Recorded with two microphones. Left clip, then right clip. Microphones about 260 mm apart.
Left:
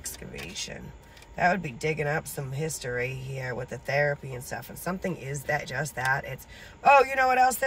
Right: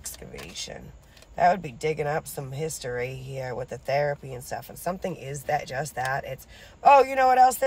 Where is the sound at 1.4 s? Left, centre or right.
Centre.